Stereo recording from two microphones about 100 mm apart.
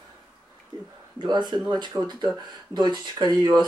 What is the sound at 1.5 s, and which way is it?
Speech, 55° right (ahead or behind).